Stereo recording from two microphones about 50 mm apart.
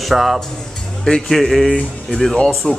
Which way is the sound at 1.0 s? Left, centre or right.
Centre.